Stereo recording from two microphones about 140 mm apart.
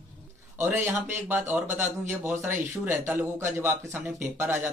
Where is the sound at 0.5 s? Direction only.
15° right (ahead or behind).